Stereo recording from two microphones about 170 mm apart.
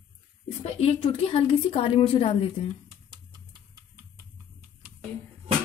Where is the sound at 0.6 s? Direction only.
40° left (ahead or behind).